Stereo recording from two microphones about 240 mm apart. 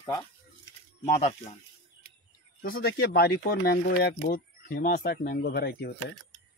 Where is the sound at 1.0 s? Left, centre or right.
Left.